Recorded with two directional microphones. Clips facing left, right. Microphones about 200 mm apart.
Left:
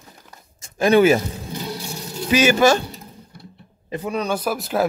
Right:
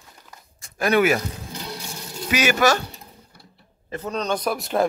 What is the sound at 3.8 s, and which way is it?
Speech, 15° left (ahead or behind).